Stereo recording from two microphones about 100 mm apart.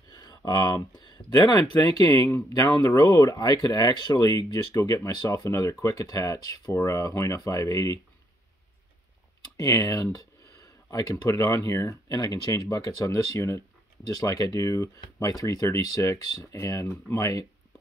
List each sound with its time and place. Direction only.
0.1 s a sound: 40° left (ahead or behind)
0.5 s speech: 40° left (ahead or behind)
2.2 s speech: 25° left (ahead or behind)
2.6 s speech: 35° left (ahead or behind)
9.6 s speech: 35° left (ahead or behind)